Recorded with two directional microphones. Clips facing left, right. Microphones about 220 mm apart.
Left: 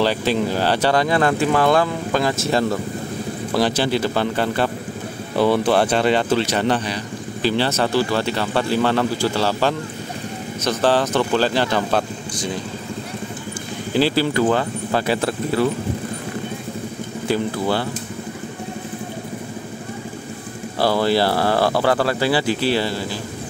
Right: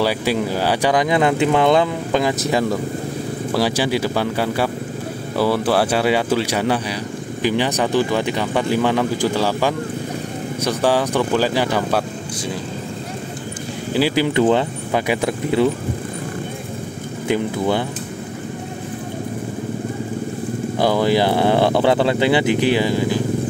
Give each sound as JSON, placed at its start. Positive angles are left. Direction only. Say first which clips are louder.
{"t": 0.0, "sound": "speech", "louder": "even", "side_deg": -10}
{"t": 13.9, "sound": "speech", "louder": "right 1 dB", "side_deg": -15}
{"t": 17.3, "sound": "speech", "louder": "right 2 dB", "side_deg": -20}
{"t": 20.8, "sound": "speech", "louder": "right 1 dB", "side_deg": -15}